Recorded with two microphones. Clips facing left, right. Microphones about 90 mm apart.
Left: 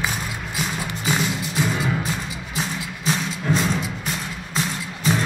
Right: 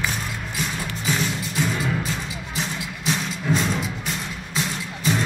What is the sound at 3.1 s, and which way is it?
Music, centre (ahead or behind).